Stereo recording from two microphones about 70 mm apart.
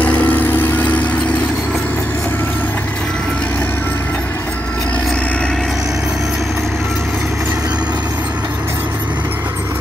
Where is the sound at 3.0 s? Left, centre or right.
Centre.